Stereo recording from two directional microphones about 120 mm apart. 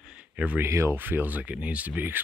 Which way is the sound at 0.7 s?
20° right (ahead or behind).